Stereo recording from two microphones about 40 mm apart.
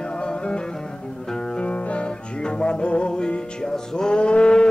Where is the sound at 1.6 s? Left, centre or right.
Left.